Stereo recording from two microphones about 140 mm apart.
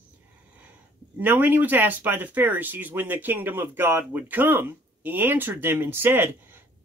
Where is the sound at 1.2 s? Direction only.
15° right (ahead or behind).